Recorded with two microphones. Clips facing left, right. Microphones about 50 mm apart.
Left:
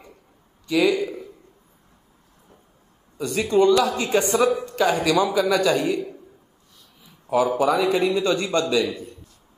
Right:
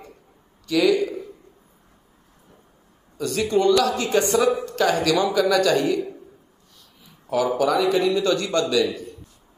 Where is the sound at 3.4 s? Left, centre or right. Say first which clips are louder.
Left 1 dB; left.